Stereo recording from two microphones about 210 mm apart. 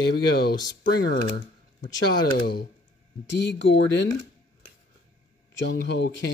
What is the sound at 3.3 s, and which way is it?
Speech, 55° left (ahead or behind).